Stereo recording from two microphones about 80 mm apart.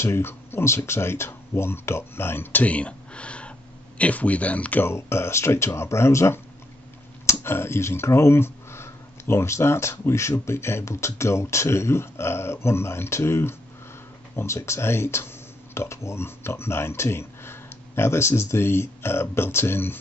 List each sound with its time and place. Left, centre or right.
0.0 s speech: left
4.8 s speech: left